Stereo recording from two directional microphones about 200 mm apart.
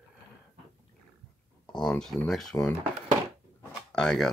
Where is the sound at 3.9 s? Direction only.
5° left (ahead or behind).